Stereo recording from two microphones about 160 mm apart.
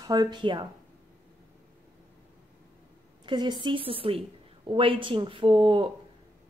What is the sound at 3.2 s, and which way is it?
Speech, 30° right (ahead or behind).